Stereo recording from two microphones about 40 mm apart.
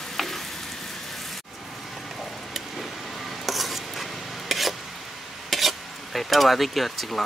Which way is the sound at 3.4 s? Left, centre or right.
Centre.